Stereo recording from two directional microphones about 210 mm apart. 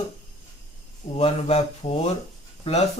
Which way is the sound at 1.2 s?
30° left (ahead or behind).